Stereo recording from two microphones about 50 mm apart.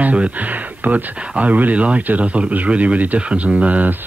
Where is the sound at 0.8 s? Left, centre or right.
Right.